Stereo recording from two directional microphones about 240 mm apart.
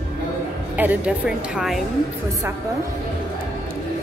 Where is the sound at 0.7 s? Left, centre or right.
Centre.